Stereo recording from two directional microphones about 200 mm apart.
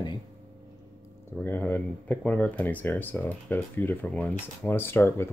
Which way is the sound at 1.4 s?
10° left (ahead or behind).